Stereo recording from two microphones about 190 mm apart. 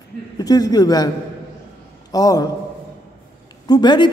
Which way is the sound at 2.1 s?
20° left (ahead or behind).